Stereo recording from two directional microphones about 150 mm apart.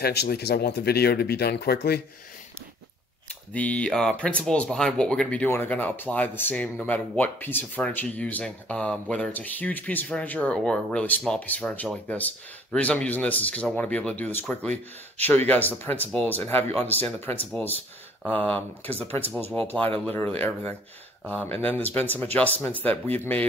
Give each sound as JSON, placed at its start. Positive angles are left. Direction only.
{"t": 0.0, "sound": "speech", "side_deg": 90}
{"t": 3.5, "sound": "speech", "side_deg": 10}